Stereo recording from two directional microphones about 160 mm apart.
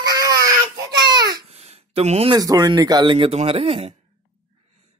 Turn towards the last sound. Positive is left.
turn(degrees=-40)  # may be behind; listen again after turning